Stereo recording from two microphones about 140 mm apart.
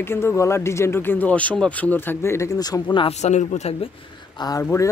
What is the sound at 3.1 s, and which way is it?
Speech, 55° left (ahead or behind).